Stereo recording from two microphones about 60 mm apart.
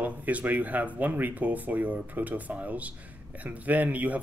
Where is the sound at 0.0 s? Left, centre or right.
Right.